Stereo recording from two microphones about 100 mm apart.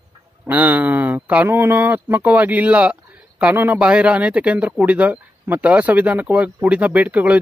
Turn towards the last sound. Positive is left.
turn(degrees=-15)  # may be behind; listen again after turning